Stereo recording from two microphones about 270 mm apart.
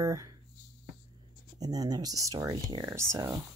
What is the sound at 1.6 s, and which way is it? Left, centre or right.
Speech, centre.